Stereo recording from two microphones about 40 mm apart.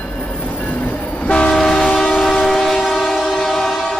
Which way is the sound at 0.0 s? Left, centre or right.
Left.